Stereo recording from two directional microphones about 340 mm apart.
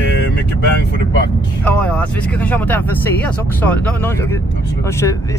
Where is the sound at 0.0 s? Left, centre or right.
Left.